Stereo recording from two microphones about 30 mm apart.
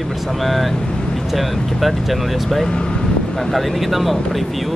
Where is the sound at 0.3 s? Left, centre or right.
Centre.